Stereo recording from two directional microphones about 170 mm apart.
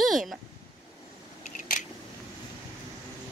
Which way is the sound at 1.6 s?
50° left (ahead or behind).